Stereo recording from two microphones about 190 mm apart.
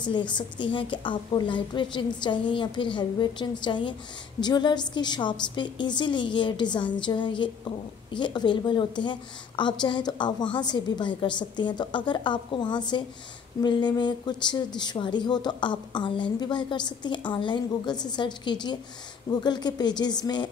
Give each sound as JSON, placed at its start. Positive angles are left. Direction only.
{"t": 0.0, "sound": "speech", "side_deg": 25}